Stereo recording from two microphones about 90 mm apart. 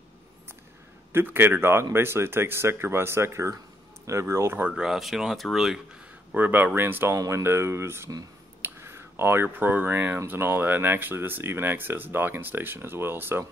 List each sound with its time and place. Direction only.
1.1 s speech: 25° right (ahead or behind)
4.6 s speech: 10° right (ahead or behind)
6.3 s speech: 20° right (ahead or behind)